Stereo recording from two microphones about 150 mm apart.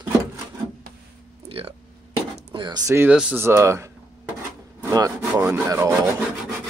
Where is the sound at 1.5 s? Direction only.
40° right (ahead or behind).